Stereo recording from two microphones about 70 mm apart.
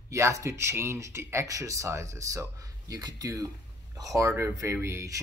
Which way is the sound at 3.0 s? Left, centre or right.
Right.